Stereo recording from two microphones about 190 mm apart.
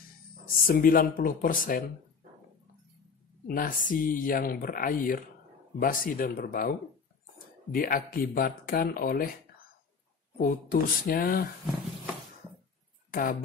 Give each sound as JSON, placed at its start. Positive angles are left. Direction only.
{"t": 0.7, "sound": "speech", "side_deg": 50}
{"t": 3.4, "sound": "speech", "side_deg": 45}
{"t": 7.7, "sound": "speech", "side_deg": 50}
{"t": 10.3, "sound": "speech", "side_deg": 50}
{"t": 13.1, "sound": "speech", "side_deg": 45}